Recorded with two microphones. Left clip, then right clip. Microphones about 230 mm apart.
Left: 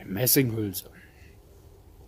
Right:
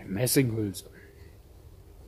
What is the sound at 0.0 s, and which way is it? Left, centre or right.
Speech, left.